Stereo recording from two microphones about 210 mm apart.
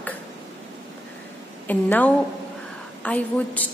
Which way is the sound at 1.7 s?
10° left (ahead or behind).